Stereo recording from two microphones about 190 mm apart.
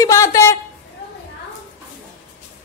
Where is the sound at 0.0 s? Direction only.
15° left (ahead or behind).